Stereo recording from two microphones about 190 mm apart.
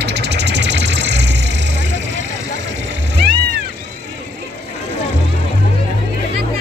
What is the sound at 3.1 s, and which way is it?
Cat, 60° right (ahead or behind).